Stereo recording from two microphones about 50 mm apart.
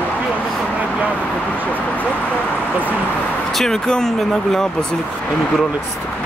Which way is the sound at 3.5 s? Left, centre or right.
Centre.